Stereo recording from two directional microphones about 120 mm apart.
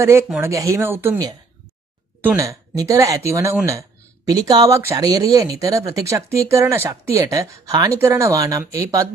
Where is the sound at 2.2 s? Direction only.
25° right (ahead or behind).